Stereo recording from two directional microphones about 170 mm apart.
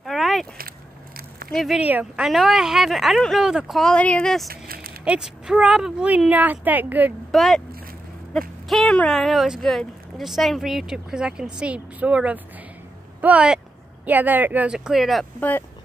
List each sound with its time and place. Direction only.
0.0 s a sound: centre (ahead or behind)
0.6 s biting: 60° right (ahead or behind)
1.5 s speech: centre (ahead or behind)
4.5 s a sound: 60° right (ahead or behind)
5.0 s speech: 5° right (ahead or behind)
7.2 s speech: centre (ahead or behind)